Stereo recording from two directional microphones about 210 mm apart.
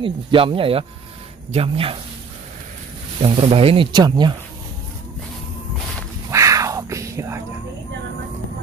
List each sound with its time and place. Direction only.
0.0 s speech: 25° right (ahead or behind)
3.2 s speech: 25° right (ahead or behind)
6.3 s a sound: 15° right (ahead or behind)